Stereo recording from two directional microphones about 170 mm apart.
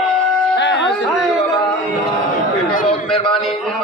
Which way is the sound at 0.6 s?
90° left.